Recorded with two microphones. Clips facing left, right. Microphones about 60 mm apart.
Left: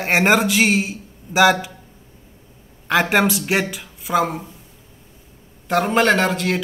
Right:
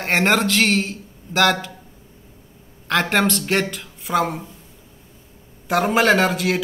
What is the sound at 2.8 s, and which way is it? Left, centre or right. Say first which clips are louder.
A man's voice: left 2 dB; centre.